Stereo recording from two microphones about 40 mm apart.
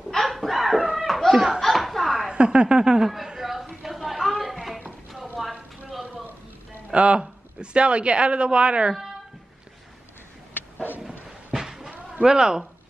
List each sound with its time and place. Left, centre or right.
0.1 s dog: centre
1.0 s laughter: centre
1.3 s laughter: centre
1.6 s laughter: centre
2.3 s speech: right
3.4 s a sound: centre
6.9 s speech: right
11.2 s a sound: centre
12.1 s speech: centre